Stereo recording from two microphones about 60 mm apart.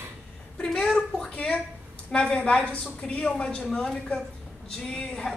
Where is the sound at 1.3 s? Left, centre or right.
Centre.